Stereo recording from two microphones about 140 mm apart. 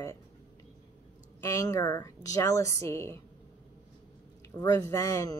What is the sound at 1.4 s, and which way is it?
A woman's voice, 25° left (ahead or behind).